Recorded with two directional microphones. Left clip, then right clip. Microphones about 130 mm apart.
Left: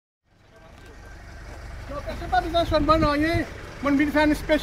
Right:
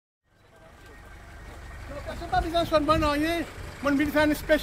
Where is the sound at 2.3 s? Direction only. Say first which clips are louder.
Left 2 dB; 15° right (ahead or behind).